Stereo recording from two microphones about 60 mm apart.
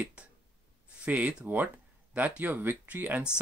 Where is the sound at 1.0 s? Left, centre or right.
Right.